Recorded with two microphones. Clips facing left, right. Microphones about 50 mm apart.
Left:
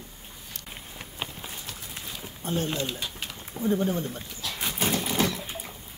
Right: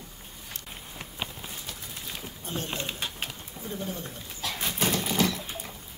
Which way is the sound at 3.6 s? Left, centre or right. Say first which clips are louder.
Left 13 dB; left.